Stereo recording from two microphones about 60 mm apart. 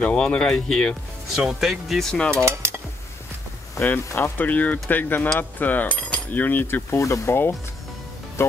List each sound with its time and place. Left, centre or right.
0.0 s speech: centre
1.3 s speech: centre
2.1 s speech: centre
3.8 s speech: left
4.4 s a sound: left
4.8 s speech: left
5.4 s a sound: left
7.0 s speech: left
8.4 s speech: left